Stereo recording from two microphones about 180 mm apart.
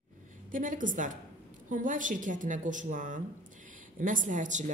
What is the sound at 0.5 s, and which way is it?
Speech, 45° right (ahead or behind).